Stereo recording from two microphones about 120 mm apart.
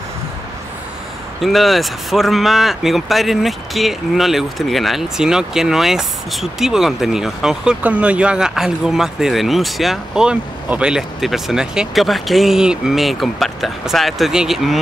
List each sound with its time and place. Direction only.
1.4 s speech: centre (ahead or behind)